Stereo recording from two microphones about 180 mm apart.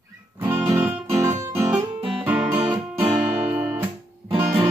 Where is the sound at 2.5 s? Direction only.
30° right (ahead or behind).